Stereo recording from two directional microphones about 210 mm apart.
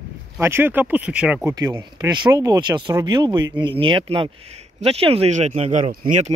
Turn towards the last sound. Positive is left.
turn(degrees=-35)  # may be behind; listen again after turning